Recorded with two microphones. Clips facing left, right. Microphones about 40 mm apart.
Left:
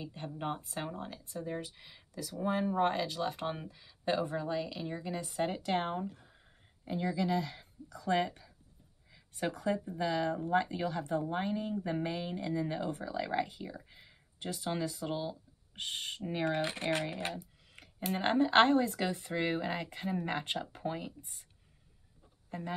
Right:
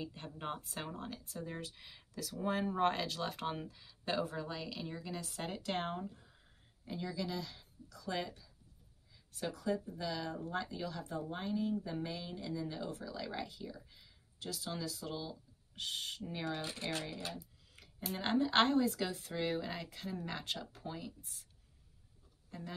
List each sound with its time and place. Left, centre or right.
0.0 s speech: centre
6.9 s speech: left
16.4 s speech: left
22.5 s speech: left